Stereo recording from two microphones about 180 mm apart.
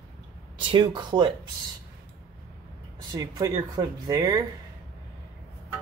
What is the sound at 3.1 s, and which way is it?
Speech, 20° right (ahead or behind).